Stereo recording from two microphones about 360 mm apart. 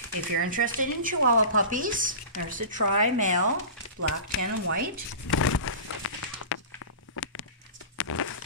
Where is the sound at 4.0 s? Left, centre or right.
Right.